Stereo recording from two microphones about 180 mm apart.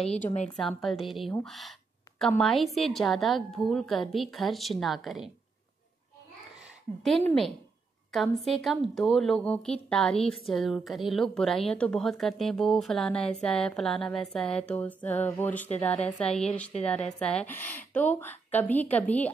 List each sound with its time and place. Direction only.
0.0 s a woman's voice: 35° left (ahead or behind)
0.7 s a woman's voice: centre (ahead or behind)
7.0 s a woman's voice: centre (ahead or behind)